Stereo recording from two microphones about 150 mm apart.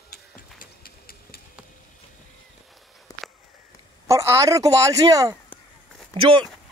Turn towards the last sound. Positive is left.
turn(degrees=-35)  # may be behind; listen again after turning